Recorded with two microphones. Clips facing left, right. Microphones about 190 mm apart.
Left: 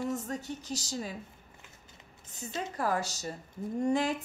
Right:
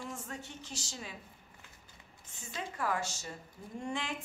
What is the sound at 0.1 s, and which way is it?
A woman's voice, 40° left (ahead or behind).